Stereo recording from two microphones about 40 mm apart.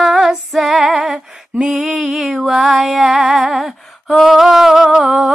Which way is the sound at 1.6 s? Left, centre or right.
Centre.